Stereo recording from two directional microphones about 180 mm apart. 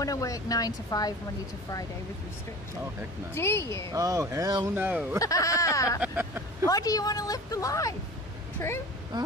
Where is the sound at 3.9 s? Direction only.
20° right (ahead or behind).